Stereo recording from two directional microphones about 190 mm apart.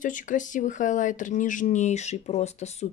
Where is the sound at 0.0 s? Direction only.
45° left (ahead or behind).